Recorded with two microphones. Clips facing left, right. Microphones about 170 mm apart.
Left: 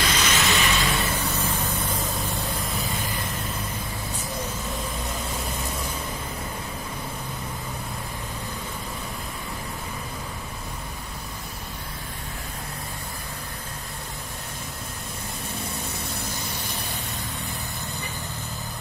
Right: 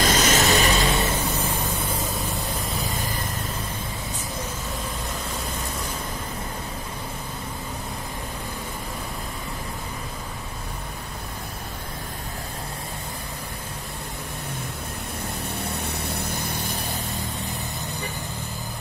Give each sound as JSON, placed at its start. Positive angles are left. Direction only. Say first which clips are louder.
{"t": 0.0, "sound": "vehicle", "louder": "right 5 dB", "side_deg": -45}
{"t": 15.5, "sound": "vehicle", "louder": "right 3 dB", "side_deg": -65}